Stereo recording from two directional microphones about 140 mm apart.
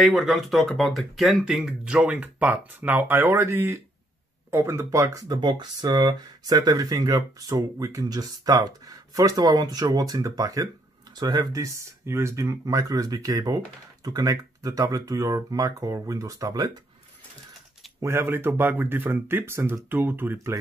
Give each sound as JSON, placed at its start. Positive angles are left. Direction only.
{"t": 0.0, "sound": "speech", "side_deg": 0}
{"t": 18.0, "sound": "speech", "side_deg": -20}